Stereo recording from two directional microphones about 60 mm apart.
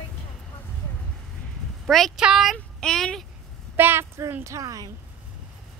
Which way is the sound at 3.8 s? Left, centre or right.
Right.